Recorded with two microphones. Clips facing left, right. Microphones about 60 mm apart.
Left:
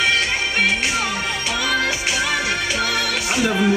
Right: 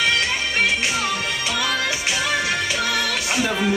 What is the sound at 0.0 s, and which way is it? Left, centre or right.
Music, left.